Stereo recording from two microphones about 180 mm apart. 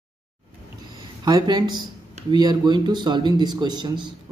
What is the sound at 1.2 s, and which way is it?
Speech, 25° right (ahead or behind).